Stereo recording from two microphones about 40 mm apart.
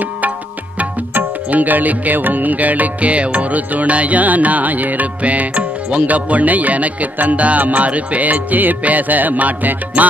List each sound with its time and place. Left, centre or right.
1.1 s music: right